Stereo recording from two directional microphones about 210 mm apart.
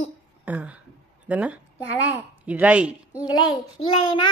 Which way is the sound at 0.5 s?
5° right (ahead or behind).